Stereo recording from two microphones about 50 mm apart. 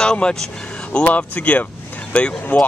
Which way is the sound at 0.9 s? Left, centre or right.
Left.